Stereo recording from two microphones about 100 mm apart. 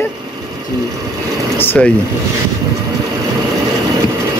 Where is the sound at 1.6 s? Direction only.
20° left (ahead or behind).